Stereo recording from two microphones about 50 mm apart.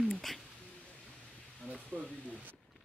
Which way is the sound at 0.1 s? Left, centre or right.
Centre.